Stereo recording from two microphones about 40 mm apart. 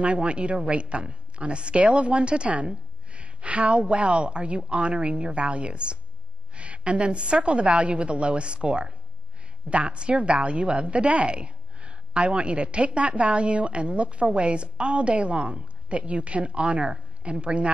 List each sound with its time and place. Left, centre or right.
0.0 s a woman's voice: right